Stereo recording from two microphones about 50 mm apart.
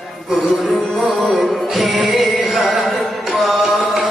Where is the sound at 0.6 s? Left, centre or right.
Right.